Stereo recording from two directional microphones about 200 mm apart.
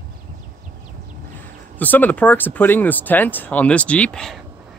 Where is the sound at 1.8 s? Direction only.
10° left (ahead or behind).